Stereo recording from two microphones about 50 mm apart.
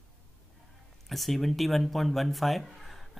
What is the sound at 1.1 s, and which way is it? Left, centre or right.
Speech, centre.